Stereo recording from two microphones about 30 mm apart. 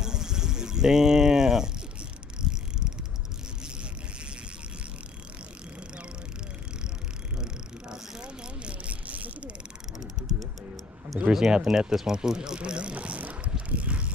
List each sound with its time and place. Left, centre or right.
0.0 s a sound: right
2.4 s bicycle: centre
8.8 s a sound: right
10.2 s music: right
11.3 s speech: centre
12.5 s speech: right
12.9 s vehicle: right
13.2 s vehicle: right
13.7 s vehicle: right